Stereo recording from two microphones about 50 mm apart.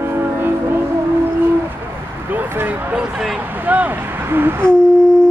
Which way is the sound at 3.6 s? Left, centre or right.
Right.